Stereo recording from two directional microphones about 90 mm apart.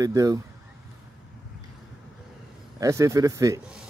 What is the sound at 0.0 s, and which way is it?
Speech, 40° right (ahead or behind).